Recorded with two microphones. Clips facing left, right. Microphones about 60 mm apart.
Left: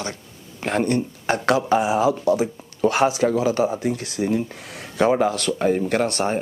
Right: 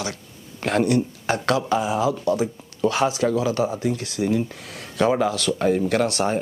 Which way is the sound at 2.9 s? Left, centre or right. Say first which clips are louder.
Left 2 dB; centre.